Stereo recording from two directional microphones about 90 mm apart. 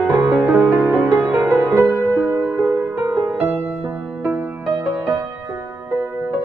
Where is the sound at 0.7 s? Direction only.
20° right (ahead or behind).